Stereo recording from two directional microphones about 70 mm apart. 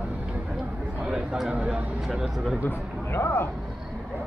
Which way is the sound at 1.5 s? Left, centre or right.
Centre.